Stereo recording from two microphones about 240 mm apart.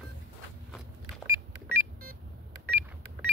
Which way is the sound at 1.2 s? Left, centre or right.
Centre.